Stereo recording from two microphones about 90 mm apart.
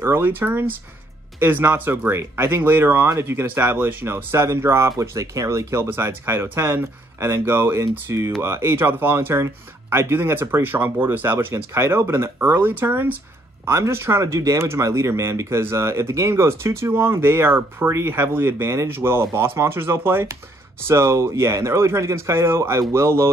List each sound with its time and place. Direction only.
0.0 s speech: 25° right (ahead or behind)